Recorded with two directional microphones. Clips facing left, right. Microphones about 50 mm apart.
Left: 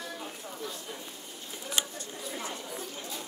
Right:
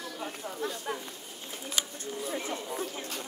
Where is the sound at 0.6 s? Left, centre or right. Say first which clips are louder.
Right 5 dB; right.